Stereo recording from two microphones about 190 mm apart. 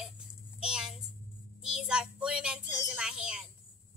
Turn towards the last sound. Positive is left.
turn(degrees=-5)  # may be behind; listen again after turning